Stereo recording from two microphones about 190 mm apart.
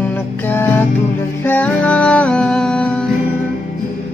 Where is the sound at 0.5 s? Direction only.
10° left (ahead or behind).